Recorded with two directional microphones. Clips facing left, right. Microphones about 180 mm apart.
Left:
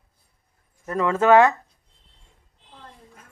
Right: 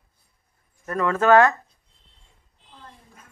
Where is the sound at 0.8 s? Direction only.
15° left (ahead or behind).